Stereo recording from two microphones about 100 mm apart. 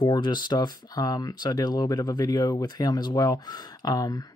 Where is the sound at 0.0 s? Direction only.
50° left (ahead or behind).